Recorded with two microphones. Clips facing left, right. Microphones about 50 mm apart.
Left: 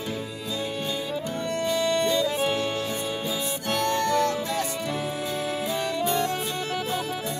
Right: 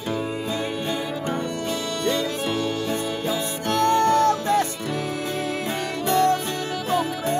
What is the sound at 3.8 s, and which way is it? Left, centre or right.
Music, right.